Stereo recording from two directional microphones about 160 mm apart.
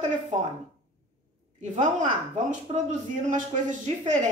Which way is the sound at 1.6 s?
50° right (ahead or behind).